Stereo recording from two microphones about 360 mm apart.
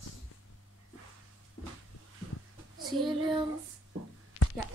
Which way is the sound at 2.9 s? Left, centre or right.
Right.